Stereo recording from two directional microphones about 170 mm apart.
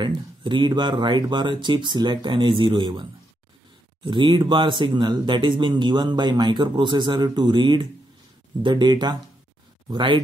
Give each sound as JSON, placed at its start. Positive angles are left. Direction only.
{"t": 0.0, "sound": "speech", "side_deg": -30}